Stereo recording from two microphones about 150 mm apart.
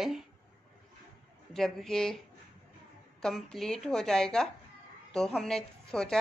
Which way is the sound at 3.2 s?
5° left (ahead or behind).